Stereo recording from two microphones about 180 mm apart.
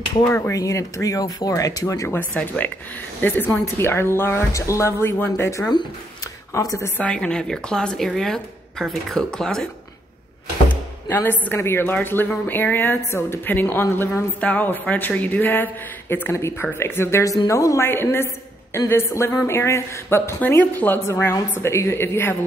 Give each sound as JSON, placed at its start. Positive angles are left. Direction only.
{"t": 0.3, "sound": "speech", "side_deg": 15}
{"t": 7.0, "sound": "speech", "side_deg": 5}
{"t": 10.7, "sound": "speech", "side_deg": 10}